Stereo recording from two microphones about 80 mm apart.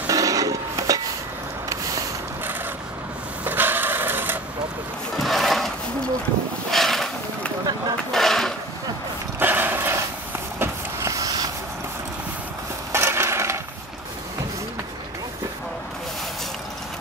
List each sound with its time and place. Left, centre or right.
0.1 s wood: right
1.7 s vehicle: right
3.4 s wood: right
5.1 s sewing machine: centre
6.7 s a sound: centre
8.1 s a sound: centre
9.4 s dog: right
10.6 s vehicle: right
12.9 s mechanisms: right